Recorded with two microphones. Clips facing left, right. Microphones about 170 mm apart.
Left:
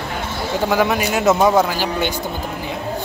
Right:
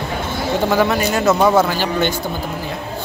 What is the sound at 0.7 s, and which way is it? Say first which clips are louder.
A man's voice: even; 10° left (ahead or behind).